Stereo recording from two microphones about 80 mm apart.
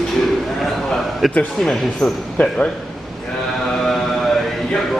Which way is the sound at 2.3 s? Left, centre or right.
Centre.